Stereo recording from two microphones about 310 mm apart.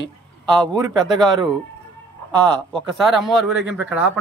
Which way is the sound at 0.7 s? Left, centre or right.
Centre.